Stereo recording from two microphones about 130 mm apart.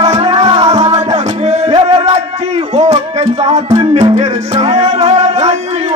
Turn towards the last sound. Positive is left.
turn(degrees=-55)  # may be behind; listen again after turning